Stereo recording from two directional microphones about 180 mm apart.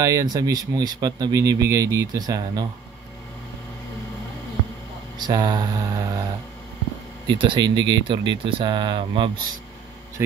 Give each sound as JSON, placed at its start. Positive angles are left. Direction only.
{"t": 0.0, "sound": "speech", "side_deg": -20}
{"t": 5.2, "sound": "speech", "side_deg": -25}
{"t": 7.2, "sound": "speech", "side_deg": -25}